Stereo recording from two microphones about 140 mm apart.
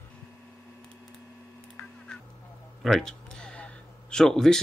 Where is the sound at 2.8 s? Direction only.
5° left (ahead or behind).